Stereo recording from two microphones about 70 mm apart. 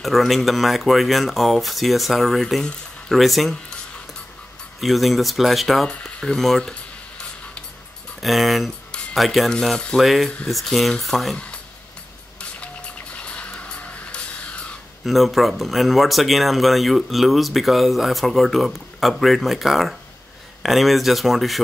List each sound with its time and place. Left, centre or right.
0.0 s speech: centre
4.7 s speech: centre
8.2 s speech: centre
13.1 s music: centre
15.0 s speech: centre